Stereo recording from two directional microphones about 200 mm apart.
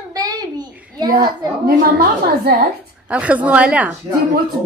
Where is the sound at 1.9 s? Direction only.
50° right (ahead or behind).